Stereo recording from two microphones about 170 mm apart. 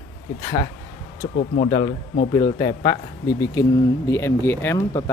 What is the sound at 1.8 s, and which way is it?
Speech, 70° left (ahead or behind).